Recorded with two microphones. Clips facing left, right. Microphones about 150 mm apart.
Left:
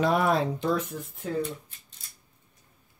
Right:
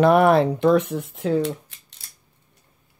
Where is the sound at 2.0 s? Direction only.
85° right.